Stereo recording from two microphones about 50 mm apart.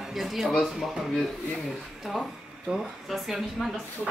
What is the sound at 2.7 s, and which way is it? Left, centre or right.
Speech, centre.